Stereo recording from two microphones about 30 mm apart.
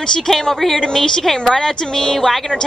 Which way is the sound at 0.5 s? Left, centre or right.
Centre.